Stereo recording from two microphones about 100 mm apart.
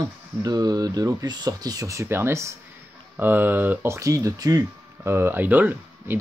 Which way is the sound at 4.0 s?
30° right (ahead or behind).